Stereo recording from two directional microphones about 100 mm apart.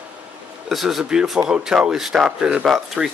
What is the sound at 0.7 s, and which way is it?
Speech, centre (ahead or behind).